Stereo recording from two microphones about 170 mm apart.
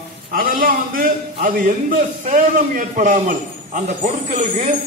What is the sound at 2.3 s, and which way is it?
A man's voice, 50° right (ahead or behind).